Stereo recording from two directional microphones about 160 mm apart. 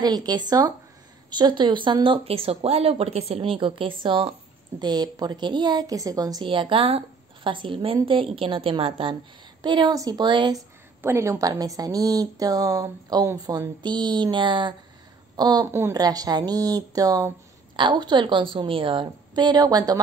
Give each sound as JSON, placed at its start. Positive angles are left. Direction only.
{"t": 0.0, "sound": "a woman's voice", "side_deg": -25}
{"t": 11.0, "sound": "a woman's voice", "side_deg": -15}